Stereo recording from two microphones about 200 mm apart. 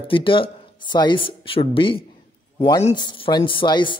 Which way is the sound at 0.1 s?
25° left (ahead or behind).